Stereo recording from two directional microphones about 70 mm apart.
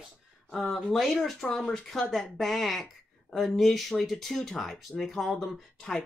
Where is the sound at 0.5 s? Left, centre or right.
Centre.